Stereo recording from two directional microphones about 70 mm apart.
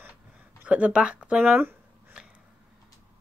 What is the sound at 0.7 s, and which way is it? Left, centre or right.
Speech, centre.